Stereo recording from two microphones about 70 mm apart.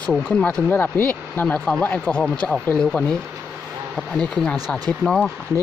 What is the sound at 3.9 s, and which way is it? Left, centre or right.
Speech, centre.